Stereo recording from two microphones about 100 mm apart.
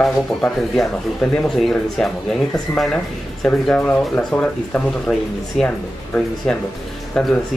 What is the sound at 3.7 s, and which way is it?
Speech, 15° left (ahead or behind).